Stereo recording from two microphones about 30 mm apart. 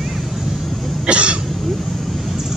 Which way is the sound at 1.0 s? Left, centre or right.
Right.